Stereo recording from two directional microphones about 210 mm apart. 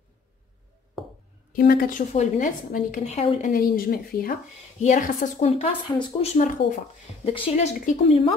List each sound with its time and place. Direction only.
1.5 s a woman's voice: 45° left (ahead or behind)